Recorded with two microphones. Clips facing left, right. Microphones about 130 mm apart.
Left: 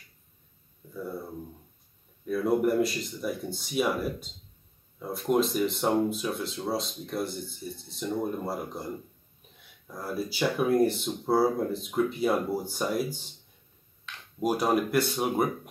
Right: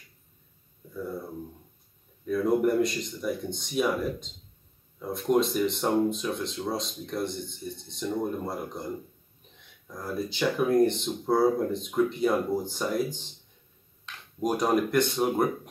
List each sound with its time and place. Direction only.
2.2 s speech: 5° left (ahead or behind)
9.8 s speech: 5° left (ahead or behind)
14.4 s speech: 5° left (ahead or behind)